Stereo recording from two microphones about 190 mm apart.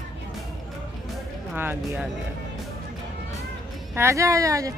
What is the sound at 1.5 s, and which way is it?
Speech, 10° right (ahead or behind).